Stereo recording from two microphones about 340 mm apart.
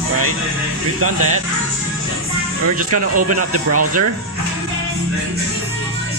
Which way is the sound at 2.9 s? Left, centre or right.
Right.